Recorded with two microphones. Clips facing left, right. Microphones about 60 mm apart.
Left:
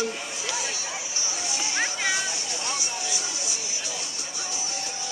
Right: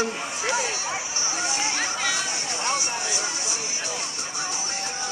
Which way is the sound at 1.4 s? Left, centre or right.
Right.